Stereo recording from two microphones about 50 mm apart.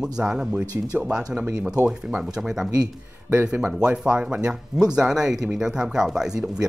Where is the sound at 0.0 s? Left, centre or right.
Centre.